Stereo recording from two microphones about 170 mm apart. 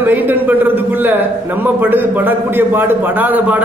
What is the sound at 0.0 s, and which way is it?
A man's voice, 10° right (ahead or behind).